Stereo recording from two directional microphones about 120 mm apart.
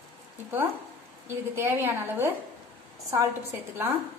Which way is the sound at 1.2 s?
20° right (ahead or behind).